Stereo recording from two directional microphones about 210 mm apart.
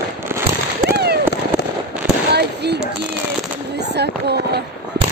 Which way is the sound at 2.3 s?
50° right (ahead or behind).